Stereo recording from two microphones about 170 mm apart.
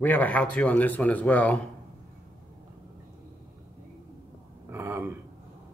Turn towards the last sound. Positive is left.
turn(degrees=-15)  # may be behind; listen again after turning